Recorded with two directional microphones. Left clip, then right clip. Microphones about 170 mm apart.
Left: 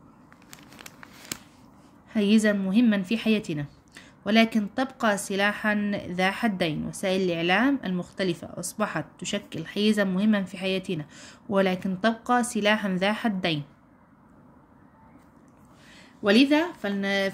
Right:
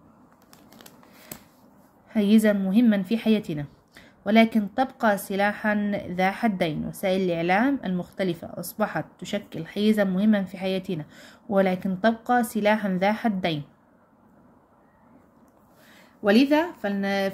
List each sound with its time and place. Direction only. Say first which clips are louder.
2.0 s a woman's voice: right 2 dB; 5° left (ahead or behind)
16.2 s a woman's voice: right 1 dB; 10° left (ahead or behind)